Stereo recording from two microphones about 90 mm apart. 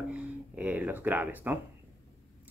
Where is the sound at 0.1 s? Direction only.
15° right (ahead or behind).